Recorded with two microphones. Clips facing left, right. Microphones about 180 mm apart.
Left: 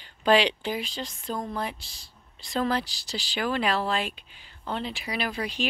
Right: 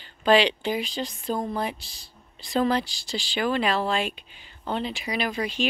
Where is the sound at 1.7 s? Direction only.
25° left (ahead or behind).